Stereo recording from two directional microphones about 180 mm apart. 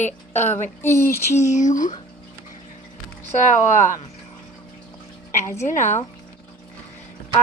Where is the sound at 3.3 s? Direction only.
45° left (ahead or behind).